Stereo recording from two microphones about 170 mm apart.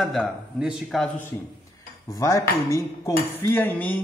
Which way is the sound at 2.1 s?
20° left (ahead or behind).